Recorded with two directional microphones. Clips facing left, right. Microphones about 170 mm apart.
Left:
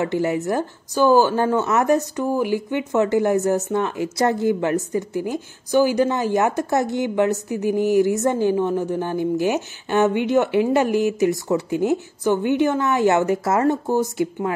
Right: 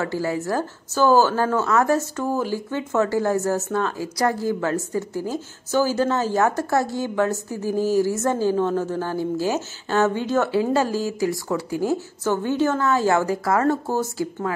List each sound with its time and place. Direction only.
0.0 s a woman's voice: 20° left (ahead or behind)